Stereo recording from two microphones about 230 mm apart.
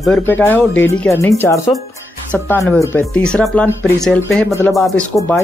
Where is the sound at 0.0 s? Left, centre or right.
Centre.